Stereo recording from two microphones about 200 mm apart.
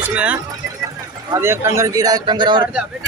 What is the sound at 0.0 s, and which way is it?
A man's voice, 5° right (ahead or behind).